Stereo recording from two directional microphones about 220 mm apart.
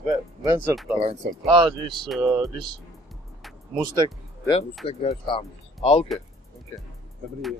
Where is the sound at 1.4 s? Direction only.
25° right (ahead or behind).